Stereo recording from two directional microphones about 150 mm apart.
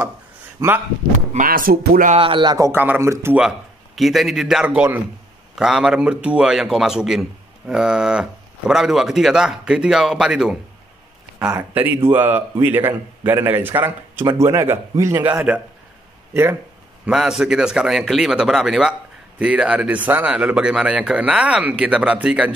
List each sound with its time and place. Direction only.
0.6 s speech: 15° right (ahead or behind)
1.3 s speech: 70° right (ahead or behind)
2.1 s speech: 35° right (ahead or behind); by 3.3 s 20° right (ahead or behind)
3.3 s a man's voice: 5° right (ahead or behind)
17.0 s a man's voice: 5° right (ahead or behind)